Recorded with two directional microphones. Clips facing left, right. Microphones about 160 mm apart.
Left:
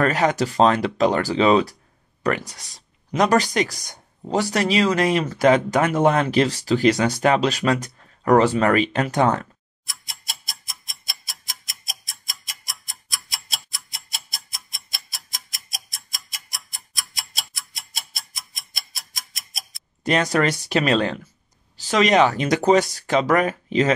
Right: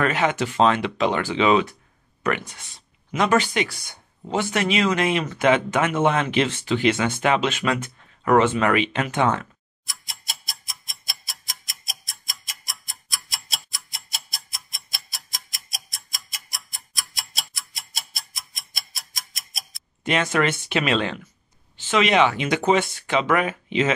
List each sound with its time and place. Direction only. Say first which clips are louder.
0.0 s speech: left 2 dB; 40° left (ahead or behind)
9.8 s a sound: even; centre (ahead or behind)
20.0 s speech: left 2 dB; 40° left (ahead or behind)